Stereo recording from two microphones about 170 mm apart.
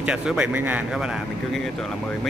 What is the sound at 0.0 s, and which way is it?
Speech, 5° right (ahead or behind).